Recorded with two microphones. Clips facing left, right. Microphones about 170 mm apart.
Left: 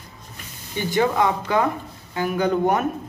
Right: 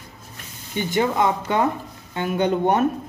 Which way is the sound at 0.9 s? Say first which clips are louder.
Left 1 dB; 20° right (ahead or behind).